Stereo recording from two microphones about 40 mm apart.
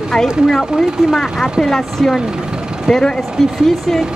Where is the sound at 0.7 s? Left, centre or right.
Centre.